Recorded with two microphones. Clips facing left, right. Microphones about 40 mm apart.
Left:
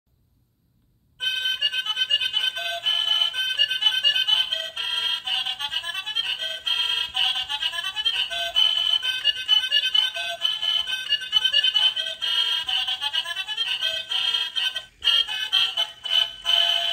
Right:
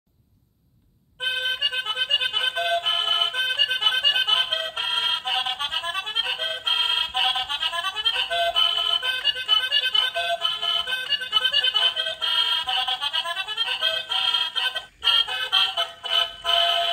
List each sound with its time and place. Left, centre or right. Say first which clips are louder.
1.9 s accordion: even; right
9.1 s music: left 1 dB; centre